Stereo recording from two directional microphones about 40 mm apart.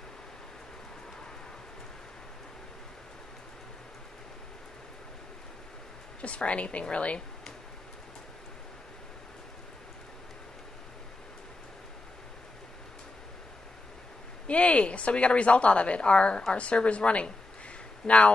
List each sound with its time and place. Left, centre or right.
6.2 s a woman's voice: left
14.5 s a woman's voice: left